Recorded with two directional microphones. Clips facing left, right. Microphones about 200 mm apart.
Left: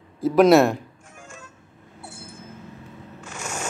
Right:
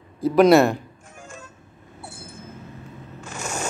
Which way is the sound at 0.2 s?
Centre (ahead or behind).